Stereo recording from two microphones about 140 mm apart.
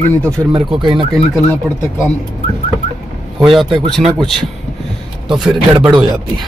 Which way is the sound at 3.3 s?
Centre (ahead or behind).